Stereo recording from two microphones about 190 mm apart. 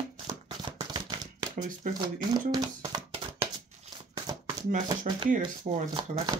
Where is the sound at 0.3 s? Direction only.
20° right (ahead or behind).